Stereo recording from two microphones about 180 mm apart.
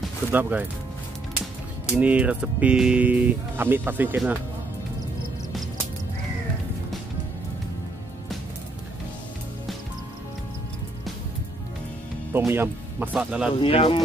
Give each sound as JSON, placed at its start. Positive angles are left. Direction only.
{"t": 0.3, "sound": "speech", "side_deg": -10}
{"t": 2.0, "sound": "speech", "side_deg": -10}
{"t": 12.3, "sound": "speech", "side_deg": -10}
{"t": 13.6, "sound": "speech", "side_deg": 30}